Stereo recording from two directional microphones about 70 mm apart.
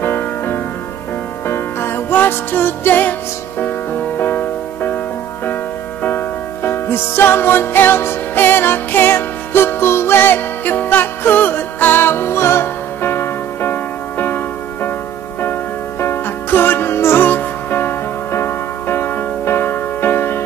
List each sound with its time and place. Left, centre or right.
0.0 s music: left
6.0 s music: left
16.0 s music: left